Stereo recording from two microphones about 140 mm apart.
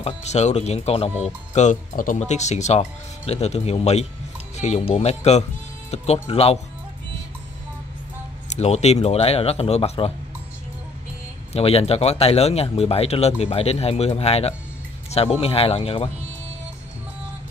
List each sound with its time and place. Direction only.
0.0 s speech: 55° left (ahead or behind)
8.5 s speech: 50° left (ahead or behind)
11.5 s speech: 45° left (ahead or behind)